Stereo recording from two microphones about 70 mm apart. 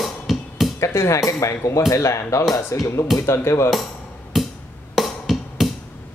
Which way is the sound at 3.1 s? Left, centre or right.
Left.